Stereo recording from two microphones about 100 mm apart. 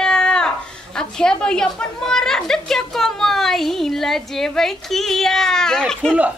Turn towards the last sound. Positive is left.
turn(degrees=5)  # may be behind; listen again after turning